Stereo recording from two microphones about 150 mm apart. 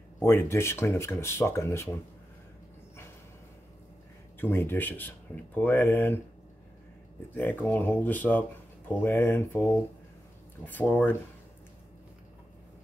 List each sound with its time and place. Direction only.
0.2 s speech: 15° left (ahead or behind)
4.4 s speech: 15° left (ahead or behind)
7.3 s speech: 10° left (ahead or behind)